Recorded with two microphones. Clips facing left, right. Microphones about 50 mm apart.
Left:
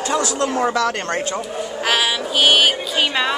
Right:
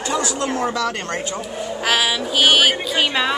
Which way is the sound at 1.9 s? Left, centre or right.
Centre.